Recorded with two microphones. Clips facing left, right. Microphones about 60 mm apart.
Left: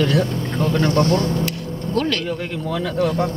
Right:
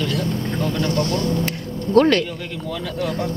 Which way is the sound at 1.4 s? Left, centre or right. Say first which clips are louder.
Even; right.